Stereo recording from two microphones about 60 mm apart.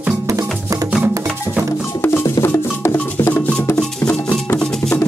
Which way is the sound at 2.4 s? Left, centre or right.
Left.